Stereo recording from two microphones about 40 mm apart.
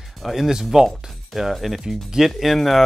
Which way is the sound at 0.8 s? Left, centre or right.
Centre.